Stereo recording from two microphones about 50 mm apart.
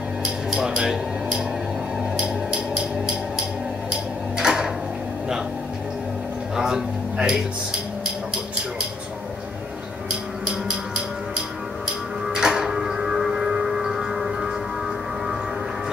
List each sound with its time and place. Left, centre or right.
0.2 s a sound: centre
2.1 s music: centre
4.4 s a sound: centre
6.5 s music: centre
10.4 s music: right
12.3 s music: centre